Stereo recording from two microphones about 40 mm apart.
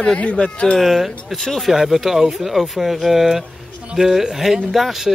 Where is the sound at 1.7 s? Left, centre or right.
Centre.